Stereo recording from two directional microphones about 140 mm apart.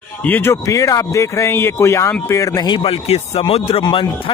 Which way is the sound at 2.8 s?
45° left (ahead or behind).